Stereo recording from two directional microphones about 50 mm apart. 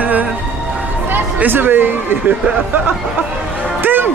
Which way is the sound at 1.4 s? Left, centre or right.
Right.